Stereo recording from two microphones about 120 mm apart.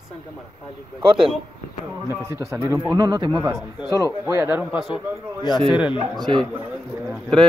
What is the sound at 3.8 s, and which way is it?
Speech, 30° left (ahead or behind).